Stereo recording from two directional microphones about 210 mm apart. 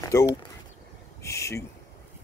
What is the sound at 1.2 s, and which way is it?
Speech, 15° left (ahead or behind).